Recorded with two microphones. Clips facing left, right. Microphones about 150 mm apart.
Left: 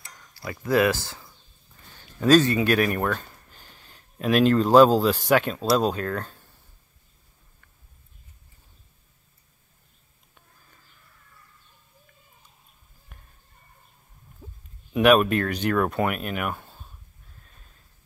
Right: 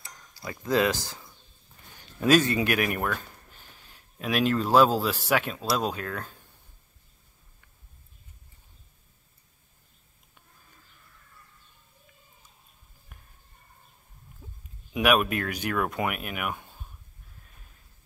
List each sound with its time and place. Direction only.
0.3 s speech: 20° right (ahead or behind)
2.0 s a sound: 10° right (ahead or behind)
2.5 s speech: 20° right (ahead or behind)
3.0 s speech: 5° right (ahead or behind)
15.0 s speech: 5° right (ahead or behind)